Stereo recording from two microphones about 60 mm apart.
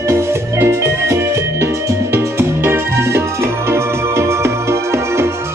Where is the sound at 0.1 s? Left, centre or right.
Right.